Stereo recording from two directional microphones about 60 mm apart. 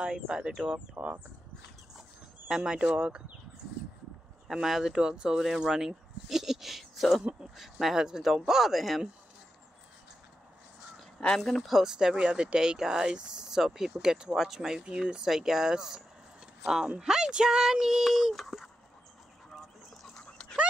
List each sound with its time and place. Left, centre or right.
0.0 s speech: centre
2.0 s a sound: centre
4.5 s speech: centre
11.1 s speech: centre
11.8 s speech: centre
20.2 s dog: centre